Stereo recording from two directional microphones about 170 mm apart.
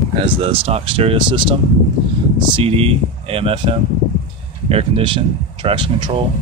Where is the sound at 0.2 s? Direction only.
30° right (ahead or behind).